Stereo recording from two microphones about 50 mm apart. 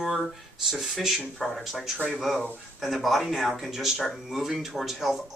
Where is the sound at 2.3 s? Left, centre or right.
Left.